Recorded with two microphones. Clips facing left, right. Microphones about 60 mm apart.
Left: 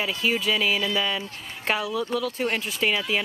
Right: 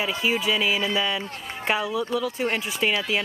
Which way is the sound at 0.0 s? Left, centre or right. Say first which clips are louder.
Right 1 dB; centre.